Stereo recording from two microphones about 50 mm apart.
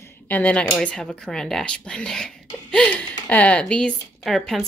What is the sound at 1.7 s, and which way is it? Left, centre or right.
Speech, centre.